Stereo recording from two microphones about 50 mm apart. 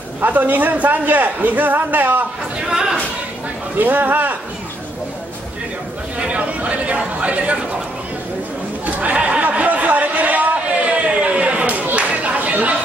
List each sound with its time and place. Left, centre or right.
0.2 s a man's voice: right
2.6 s chatter: centre
3.7 s a man's voice: right
6.1 s speech: right
8.8 s a sound: right